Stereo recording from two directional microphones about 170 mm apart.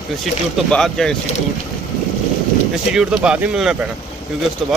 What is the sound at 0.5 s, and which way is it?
Speech, centre (ahead or behind).